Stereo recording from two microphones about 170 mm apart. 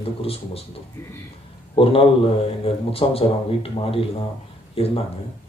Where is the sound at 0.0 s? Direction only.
35° left (ahead or behind).